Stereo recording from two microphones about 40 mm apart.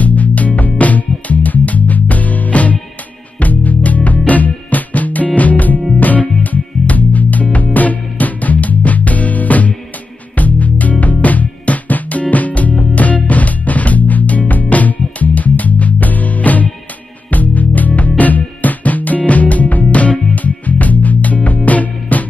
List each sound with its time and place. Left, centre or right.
0.0 s music: left